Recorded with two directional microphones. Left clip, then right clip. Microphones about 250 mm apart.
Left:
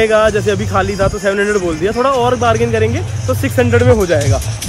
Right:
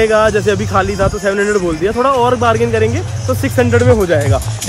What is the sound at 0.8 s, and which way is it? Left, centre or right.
Speech, centre.